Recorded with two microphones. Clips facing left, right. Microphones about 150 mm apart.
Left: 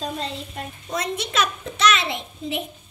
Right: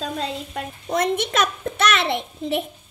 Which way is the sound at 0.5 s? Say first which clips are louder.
Right 7 dB; 55° right (ahead or behind).